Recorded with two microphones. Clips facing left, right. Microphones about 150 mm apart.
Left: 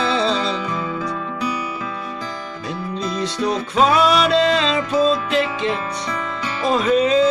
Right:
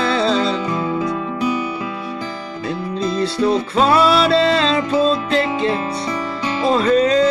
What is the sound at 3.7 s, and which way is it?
Music, centre (ahead or behind).